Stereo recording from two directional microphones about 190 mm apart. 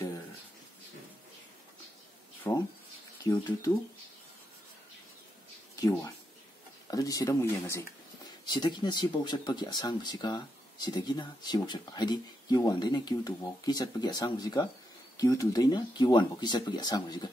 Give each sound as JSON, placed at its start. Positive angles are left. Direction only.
{"t": 2.4, "sound": "speech", "side_deg": 15}
{"t": 5.8, "sound": "speech", "side_deg": 15}